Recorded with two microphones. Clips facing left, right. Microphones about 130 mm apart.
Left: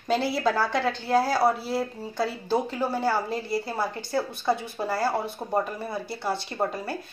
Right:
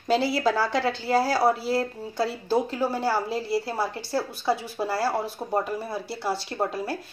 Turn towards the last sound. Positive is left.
turn(degrees=-5)  # may be behind; listen again after turning